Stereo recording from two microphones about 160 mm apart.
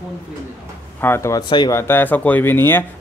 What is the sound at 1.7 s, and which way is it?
Speech, 15° left (ahead or behind).